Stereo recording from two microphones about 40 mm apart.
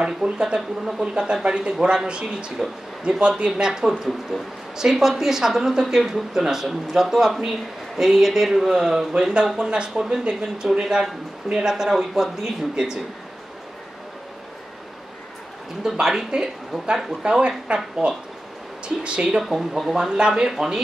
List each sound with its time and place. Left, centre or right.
0.0 s speech: right
15.8 s speech: centre
16.8 s speech: right
18.0 s speech: centre
19.0 s speech: right
19.9 s speech: centre
20.2 s speech: right